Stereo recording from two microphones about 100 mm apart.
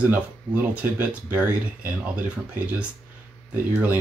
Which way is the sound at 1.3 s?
15° right (ahead or behind).